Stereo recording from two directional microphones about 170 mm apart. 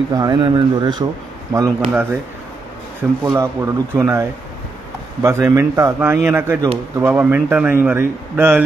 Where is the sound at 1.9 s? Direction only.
10° right (ahead or behind).